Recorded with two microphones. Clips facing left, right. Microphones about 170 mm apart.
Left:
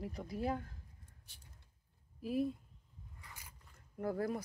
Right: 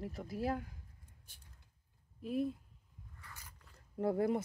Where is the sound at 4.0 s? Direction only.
25° right (ahead or behind).